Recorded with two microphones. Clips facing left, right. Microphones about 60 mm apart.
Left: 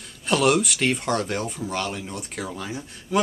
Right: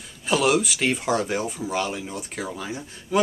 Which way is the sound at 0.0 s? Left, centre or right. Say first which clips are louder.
Left 1 dB; centre.